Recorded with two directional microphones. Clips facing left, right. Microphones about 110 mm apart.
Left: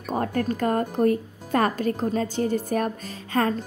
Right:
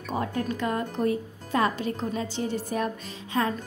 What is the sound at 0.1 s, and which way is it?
Speech, 50° left (ahead or behind).